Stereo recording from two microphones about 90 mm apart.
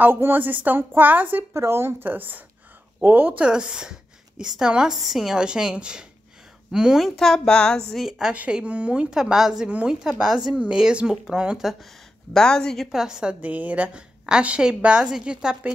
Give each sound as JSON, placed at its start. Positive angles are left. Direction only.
{"t": 0.0, "sound": "a woman's voice", "side_deg": -25}
{"t": 3.4, "sound": "speech", "side_deg": -10}
{"t": 7.2, "sound": "speech", "side_deg": 5}
{"t": 7.9, "sound": "speech", "side_deg": -5}
{"t": 12.4, "sound": "speech", "side_deg": 10}
{"t": 12.9, "sound": "speech", "side_deg": -5}